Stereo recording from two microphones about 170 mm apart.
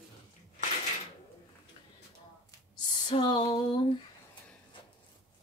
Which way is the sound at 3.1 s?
25° left (ahead or behind).